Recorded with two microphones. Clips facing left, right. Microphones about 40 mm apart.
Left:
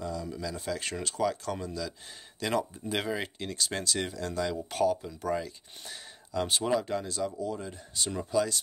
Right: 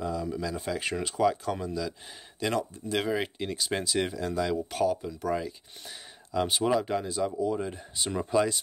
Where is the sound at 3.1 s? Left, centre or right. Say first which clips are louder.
Right 3 dB; centre.